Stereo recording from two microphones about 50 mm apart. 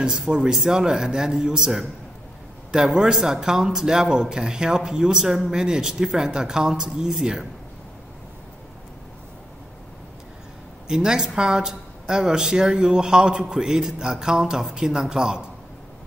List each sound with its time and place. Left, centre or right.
0.0 s speech: centre
10.9 s speech: centre